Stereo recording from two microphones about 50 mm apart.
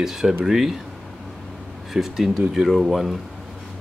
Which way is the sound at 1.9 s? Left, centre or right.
Centre.